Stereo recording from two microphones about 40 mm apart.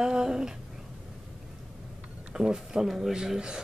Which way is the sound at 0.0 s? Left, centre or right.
Centre.